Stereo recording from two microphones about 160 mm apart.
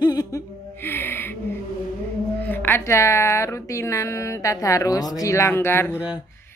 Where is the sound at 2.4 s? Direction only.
10° left (ahead or behind).